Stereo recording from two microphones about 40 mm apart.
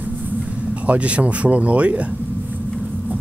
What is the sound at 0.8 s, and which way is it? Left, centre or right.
Speech, right.